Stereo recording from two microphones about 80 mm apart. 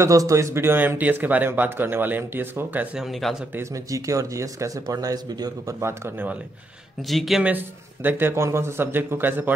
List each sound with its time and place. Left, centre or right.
0.0 s speech: right; by 3.0 s centre
3.0 s speech: centre
3.7 s speech: right
5.8 s speech: right
7.0 s speech: centre
7.4 s speech: right